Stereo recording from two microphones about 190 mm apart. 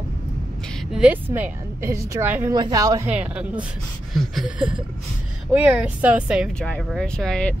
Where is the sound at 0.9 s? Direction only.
5° right (ahead or behind).